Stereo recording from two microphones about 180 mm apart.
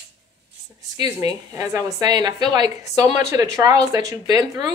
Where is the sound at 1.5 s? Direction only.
15° right (ahead or behind).